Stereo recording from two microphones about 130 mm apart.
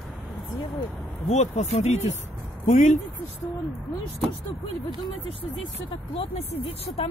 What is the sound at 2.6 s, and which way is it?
Speech, 75° left (ahead or behind).